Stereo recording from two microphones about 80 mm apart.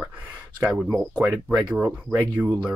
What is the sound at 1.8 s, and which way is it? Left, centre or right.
Speech, right.